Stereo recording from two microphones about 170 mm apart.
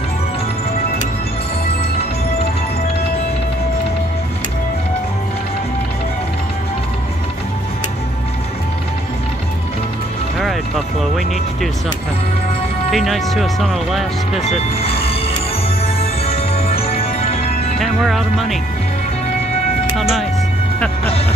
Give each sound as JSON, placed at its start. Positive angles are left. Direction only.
{"t": 12.9, "sound": "speech", "side_deg": 0}
{"t": 14.4, "sound": "speech", "side_deg": 35}
{"t": 16.0, "sound": "music", "side_deg": 35}
{"t": 17.7, "sound": "speech", "side_deg": 0}
{"t": 20.0, "sound": "music", "side_deg": 0}